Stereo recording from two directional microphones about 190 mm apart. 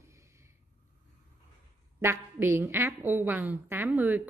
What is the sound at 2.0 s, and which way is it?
A woman's voice, 15° right (ahead or behind).